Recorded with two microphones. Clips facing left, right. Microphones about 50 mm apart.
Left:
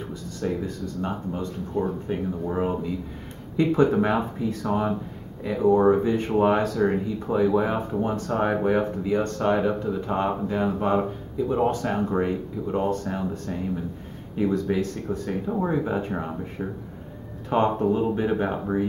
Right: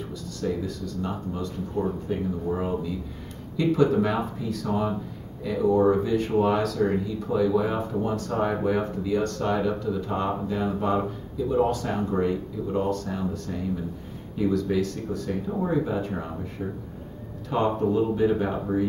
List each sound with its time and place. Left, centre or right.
0.1 s speech: left
17.5 s speech: left